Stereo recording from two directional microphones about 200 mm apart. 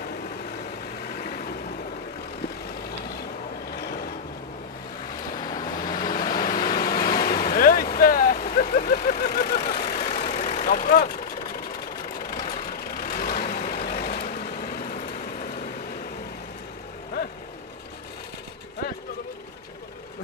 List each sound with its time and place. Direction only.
1.1 s vehicle: 50° left (ahead or behind)
3.7 s vehicle: 50° left (ahead or behind)
5.3 s vehicle: 20° left (ahead or behind)
6.0 s vehicle: 45° left (ahead or behind)
10.2 s vehicle: 35° left (ahead or behind)
12.4 s vehicle: 45° left (ahead or behind)